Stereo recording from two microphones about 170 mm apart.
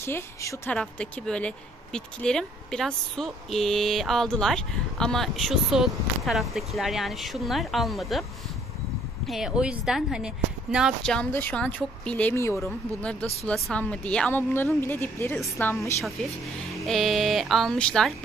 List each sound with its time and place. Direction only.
0.0 s a woman's voice: 15° left (ahead or behind)
0.7 s speech: 5° left (ahead or behind)
9.3 s a woman's voice: 5° right (ahead or behind); by 16.1 s 15° left (ahead or behind)
16.8 s speech: centre (ahead or behind)